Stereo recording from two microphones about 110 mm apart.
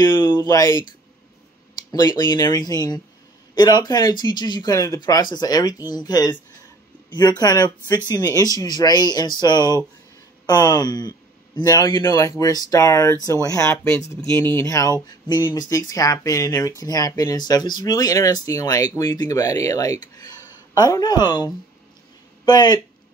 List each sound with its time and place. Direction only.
0.0 s speech: 40° left (ahead or behind)
1.9 s speech: 40° left (ahead or behind)